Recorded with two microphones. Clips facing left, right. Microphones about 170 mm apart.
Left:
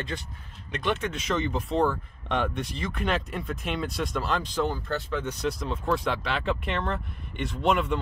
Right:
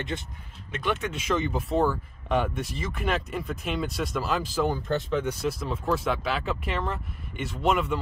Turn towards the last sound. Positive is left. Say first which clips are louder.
# even
turn(degrees=0)  # may be behind; listen again after turning